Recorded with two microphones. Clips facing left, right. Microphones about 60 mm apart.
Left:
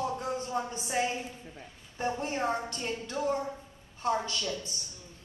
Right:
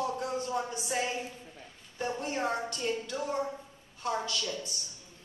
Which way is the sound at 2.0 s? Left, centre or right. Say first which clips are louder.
Left 1 dB; left.